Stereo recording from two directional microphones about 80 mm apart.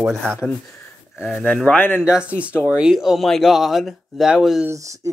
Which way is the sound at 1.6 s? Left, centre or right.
Left.